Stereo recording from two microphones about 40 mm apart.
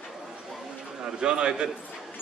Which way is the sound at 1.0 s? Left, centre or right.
Right.